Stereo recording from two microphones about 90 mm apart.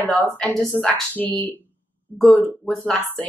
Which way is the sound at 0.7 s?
Centre (ahead or behind).